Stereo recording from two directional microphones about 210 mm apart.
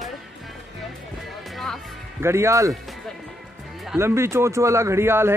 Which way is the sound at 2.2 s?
15° right (ahead or behind).